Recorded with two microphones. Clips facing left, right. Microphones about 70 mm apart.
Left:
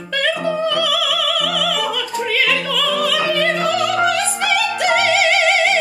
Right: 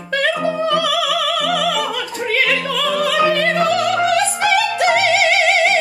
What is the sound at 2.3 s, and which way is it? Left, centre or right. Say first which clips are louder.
Opera: right 2 dB; right.